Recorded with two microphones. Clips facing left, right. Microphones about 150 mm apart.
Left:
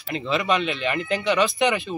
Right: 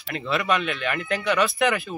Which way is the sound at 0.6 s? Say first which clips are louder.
Left 2 dB; 30° left (ahead or behind).